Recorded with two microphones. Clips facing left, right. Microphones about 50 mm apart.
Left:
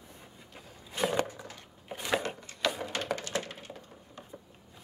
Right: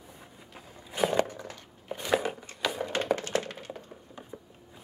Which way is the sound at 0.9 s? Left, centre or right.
Centre.